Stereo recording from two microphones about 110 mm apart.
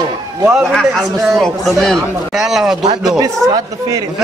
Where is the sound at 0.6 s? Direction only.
Centre (ahead or behind).